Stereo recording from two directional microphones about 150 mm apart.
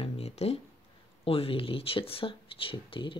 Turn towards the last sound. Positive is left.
turn(degrees=35)  # may be behind; listen again after turning